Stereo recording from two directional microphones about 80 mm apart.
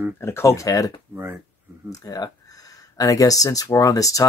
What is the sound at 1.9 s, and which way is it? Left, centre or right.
Speech, left.